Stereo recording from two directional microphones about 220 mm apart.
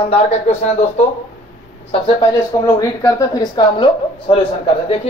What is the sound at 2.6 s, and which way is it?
Speech, 15° left (ahead or behind).